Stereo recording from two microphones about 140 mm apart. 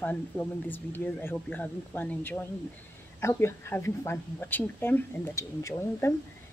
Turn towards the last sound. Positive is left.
turn(degrees=20)  # may be behind; listen again after turning